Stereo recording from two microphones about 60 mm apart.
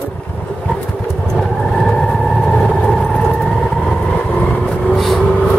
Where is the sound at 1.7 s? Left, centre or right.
Centre.